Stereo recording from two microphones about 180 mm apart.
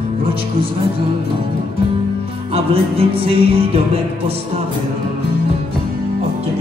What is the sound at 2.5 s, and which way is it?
Music, 30° right (ahead or behind).